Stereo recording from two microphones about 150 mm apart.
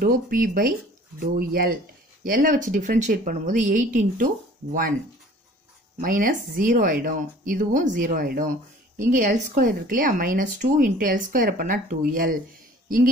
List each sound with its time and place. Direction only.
0.0 s speech: 70° right (ahead or behind)
2.2 s speech: 65° right (ahead or behind)
5.9 s speech: 65° right (ahead or behind)